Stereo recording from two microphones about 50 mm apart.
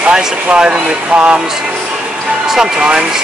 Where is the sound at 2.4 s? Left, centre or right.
Centre.